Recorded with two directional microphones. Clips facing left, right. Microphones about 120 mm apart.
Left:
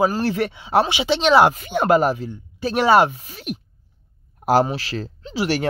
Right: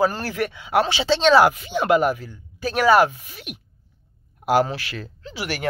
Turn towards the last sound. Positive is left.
turn(degrees=30)  # may be behind; listen again after turning